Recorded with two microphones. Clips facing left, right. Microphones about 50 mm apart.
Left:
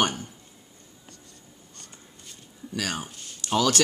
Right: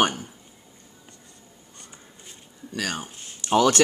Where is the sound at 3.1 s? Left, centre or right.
Right.